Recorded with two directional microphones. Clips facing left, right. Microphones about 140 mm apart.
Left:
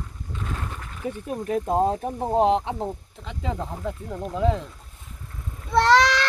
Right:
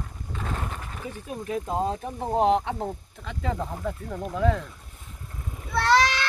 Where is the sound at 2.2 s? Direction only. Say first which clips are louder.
Left 1 dB; 30° left (ahead or behind).